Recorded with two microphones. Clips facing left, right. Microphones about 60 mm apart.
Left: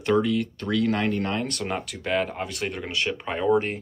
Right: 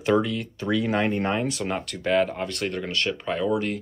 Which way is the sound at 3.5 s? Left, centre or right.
Left.